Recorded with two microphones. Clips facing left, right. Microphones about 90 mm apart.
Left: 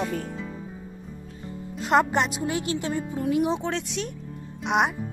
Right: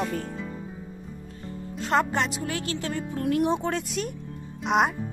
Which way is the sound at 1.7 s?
15° left (ahead or behind).